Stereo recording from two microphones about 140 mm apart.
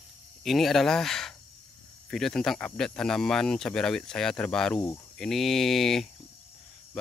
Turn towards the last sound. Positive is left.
turn(degrees=0)  # may be behind; listen again after turning